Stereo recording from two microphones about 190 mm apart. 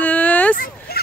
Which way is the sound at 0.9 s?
55° left (ahead or behind).